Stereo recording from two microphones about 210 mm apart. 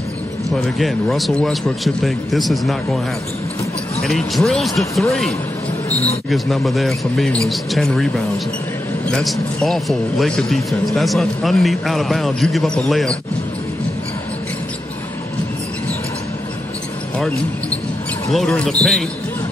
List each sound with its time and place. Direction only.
0.7 s a man's voice: centre (ahead or behind)
4.0 s a man's voice: centre (ahead or behind)
5.9 s speech: 30° left (ahead or behind)
6.3 s a man's voice: centre (ahead or behind)
9.1 s a man's voice: centre (ahead or behind)
18.3 s a man's voice: 5° left (ahead or behind)